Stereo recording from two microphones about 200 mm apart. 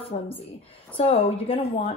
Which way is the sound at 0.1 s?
35° left (ahead or behind).